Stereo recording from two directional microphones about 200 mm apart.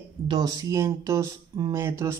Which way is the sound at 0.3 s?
20° right (ahead or behind).